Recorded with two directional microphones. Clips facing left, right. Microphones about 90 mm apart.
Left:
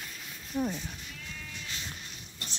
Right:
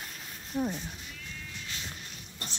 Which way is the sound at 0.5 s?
15° right (ahead or behind).